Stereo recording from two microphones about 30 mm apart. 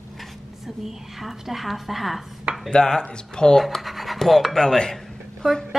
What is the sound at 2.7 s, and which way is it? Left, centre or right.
Speech, left.